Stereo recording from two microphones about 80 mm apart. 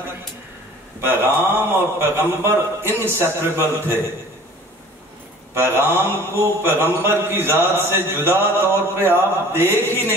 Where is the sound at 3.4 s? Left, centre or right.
Right.